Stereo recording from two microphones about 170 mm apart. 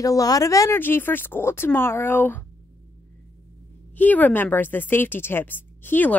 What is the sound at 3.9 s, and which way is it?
A woman's voice, 10° left (ahead or behind).